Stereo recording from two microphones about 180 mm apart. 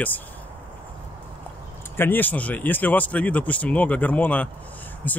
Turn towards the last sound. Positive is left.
turn(degrees=10)  # may be behind; listen again after turning